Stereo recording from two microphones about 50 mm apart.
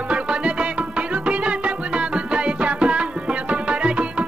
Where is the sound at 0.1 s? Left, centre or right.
Right.